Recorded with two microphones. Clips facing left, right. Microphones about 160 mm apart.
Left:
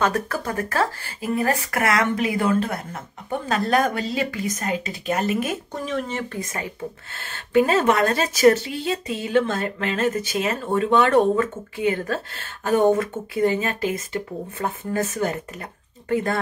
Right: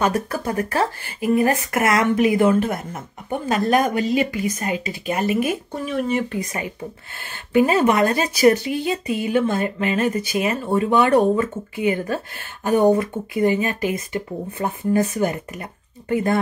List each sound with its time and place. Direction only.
0.0 s speech: 15° right (ahead or behind)